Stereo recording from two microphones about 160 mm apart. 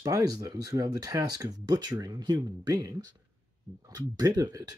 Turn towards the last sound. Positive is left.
turn(degrees=-20)  # may be behind; listen again after turning